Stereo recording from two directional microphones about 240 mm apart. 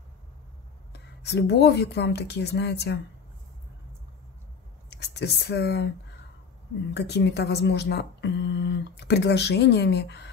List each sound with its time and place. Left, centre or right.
0.9 s speech: left
4.8 s speech: left
6.9 s speech: left